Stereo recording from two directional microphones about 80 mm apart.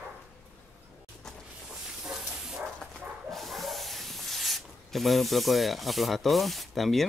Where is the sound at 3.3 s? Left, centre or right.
Centre.